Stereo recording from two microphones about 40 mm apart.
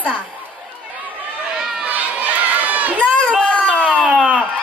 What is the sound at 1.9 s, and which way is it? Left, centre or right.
Crowd, right.